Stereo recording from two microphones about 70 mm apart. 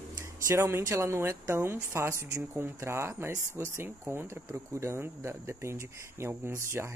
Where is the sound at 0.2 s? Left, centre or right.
Right.